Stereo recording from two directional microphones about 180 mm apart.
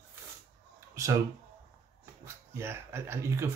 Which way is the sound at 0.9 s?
15° right (ahead or behind).